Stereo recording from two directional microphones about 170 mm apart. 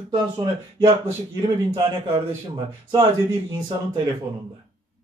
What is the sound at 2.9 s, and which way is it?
Speech, 25° right (ahead or behind).